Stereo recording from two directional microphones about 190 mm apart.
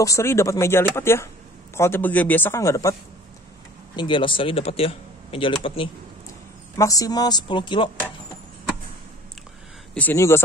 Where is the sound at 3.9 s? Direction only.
25° left (ahead or behind).